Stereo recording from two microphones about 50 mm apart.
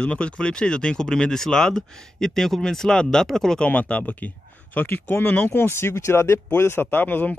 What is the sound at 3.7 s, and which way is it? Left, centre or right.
Speech, left.